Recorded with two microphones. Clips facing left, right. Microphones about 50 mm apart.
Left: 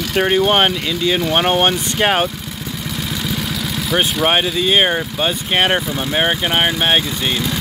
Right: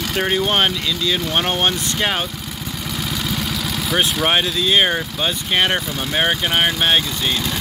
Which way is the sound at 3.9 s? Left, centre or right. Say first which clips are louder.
Left 2 dB; centre.